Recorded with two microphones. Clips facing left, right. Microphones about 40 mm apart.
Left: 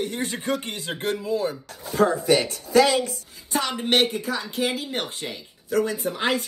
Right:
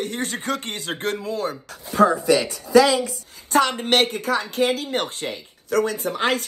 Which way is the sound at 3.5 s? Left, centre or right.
Right.